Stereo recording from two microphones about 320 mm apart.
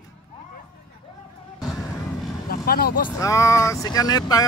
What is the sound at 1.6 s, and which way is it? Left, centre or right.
Music, centre.